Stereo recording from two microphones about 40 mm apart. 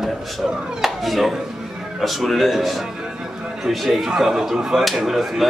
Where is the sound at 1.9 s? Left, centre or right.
Centre.